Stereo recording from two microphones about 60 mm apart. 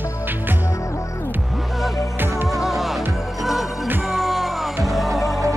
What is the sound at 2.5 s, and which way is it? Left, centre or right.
Music, centre.